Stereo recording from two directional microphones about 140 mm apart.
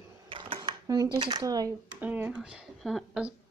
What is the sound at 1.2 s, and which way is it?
Speech, 35° right (ahead or behind).